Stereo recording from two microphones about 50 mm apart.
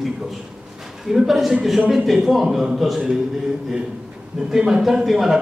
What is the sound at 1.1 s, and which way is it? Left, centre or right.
A man's voice, centre.